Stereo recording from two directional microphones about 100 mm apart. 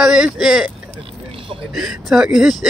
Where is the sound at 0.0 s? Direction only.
5° right (ahead or behind).